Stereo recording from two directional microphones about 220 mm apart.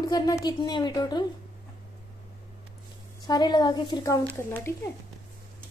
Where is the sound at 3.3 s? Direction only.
20° left (ahead or behind).